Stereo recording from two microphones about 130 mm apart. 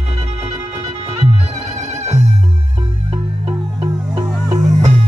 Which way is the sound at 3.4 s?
25° right (ahead or behind).